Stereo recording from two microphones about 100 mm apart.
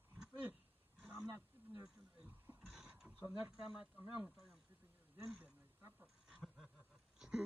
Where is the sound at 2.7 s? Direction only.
10° right (ahead or behind).